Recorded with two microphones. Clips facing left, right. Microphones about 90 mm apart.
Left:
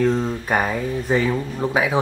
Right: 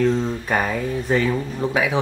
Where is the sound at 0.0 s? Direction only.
5° left (ahead or behind).